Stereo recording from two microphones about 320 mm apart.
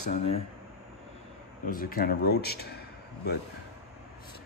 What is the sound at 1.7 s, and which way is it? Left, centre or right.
Speech, left.